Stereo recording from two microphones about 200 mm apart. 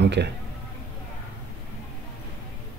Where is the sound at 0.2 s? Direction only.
60° right (ahead or behind).